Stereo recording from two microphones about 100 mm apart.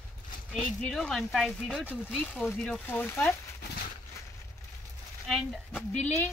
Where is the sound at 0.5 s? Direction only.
5° left (ahead or behind); by 3.3 s 20° left (ahead or behind).